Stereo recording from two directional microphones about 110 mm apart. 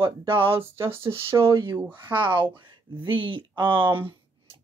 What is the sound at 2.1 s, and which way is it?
Speech, 45° right (ahead or behind).